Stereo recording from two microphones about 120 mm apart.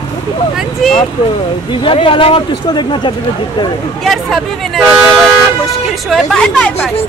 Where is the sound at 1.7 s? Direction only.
45° left (ahead or behind).